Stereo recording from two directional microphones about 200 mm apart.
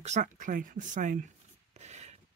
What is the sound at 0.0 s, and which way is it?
Speech, 35° right (ahead or behind).